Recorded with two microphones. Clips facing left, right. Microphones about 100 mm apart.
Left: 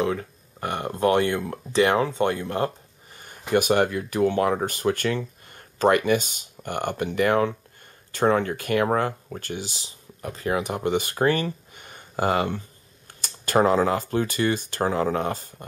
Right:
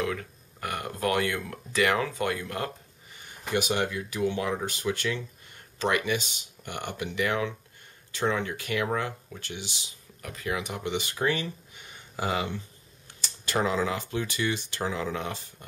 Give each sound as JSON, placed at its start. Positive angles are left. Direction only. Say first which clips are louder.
{"t": 0.0, "sound": "speech", "louder": "left 6 dB", "side_deg": 30}
{"t": 3.2, "sound": "speech", "louder": "left 7 dB", "side_deg": 50}